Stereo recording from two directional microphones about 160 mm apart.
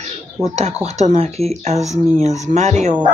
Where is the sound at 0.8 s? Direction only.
45° right (ahead or behind).